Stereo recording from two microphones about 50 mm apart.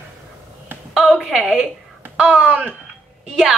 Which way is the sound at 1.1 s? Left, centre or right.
Centre.